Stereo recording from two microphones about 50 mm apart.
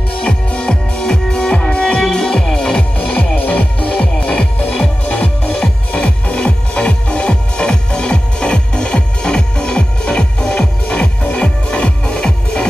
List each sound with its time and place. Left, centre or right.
0.2 s music: left
2.0 s music: centre
3.0 s music: left
3.9 s music: left